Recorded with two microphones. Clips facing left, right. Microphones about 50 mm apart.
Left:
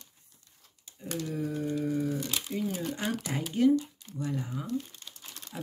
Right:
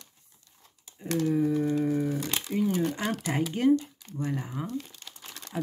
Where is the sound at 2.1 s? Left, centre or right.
Right.